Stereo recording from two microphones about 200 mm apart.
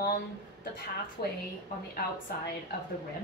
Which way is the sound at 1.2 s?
50° left (ahead or behind).